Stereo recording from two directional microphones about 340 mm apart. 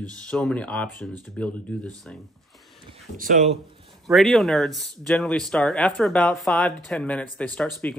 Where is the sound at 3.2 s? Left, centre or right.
Right.